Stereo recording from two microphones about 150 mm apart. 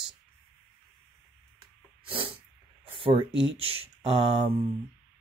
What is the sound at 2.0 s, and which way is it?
Sneeze, 35° right (ahead or behind).